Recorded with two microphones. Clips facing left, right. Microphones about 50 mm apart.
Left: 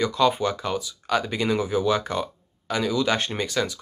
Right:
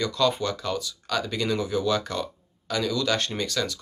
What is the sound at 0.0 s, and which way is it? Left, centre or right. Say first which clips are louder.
Speech: left 3 dB; centre.